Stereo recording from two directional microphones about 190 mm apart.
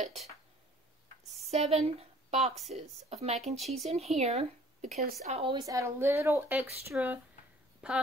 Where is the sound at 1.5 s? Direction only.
35° right (ahead or behind).